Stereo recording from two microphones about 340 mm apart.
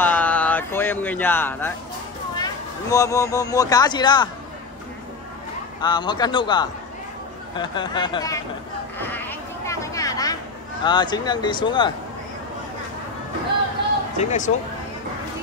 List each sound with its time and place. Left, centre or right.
0.0 s a sound: centre
2.3 s speech: centre
5.8 s speech: centre
9.0 s sheep: centre
10.8 s speech: centre
14.1 s speech: left